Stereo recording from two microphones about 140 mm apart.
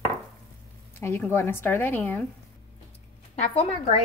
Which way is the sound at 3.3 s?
50° left (ahead or behind).